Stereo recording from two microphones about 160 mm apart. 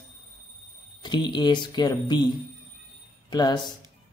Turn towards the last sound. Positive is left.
turn(degrees=25)  # may be behind; listen again after turning